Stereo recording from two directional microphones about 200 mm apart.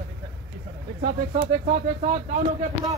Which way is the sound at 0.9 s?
45° right (ahead or behind).